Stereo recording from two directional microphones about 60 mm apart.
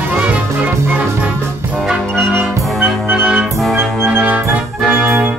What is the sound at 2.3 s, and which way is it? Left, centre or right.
Music, right.